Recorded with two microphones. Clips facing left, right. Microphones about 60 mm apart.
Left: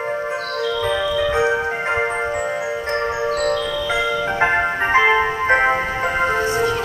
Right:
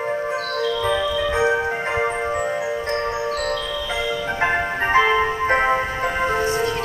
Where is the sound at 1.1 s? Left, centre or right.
Centre.